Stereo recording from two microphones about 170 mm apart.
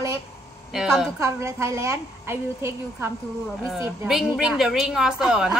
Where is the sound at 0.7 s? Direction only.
Centre (ahead or behind).